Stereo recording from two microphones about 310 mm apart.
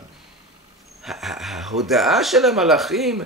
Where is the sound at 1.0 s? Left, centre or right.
Centre.